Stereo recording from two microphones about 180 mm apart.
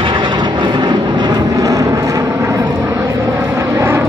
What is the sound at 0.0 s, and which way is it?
Vehicle, 25° right (ahead or behind).